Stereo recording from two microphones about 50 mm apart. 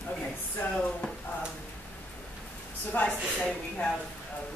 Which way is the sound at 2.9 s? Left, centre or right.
Left.